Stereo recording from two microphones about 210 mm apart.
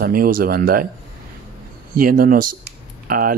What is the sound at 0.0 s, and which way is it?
Speech, 45° right (ahead or behind).